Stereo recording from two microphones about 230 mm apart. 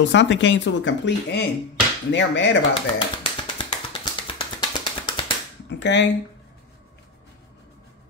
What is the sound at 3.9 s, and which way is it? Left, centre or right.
Tap, left.